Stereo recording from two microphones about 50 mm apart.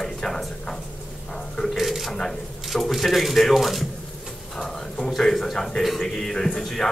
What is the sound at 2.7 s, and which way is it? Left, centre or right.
A man's voice, centre.